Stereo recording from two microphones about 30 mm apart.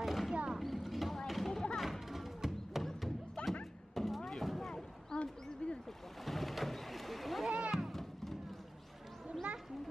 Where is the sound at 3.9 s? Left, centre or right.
Centre.